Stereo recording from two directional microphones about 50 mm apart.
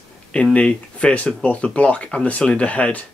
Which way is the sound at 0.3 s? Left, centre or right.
Left.